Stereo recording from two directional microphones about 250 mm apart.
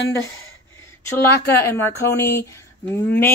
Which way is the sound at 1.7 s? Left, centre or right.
Centre.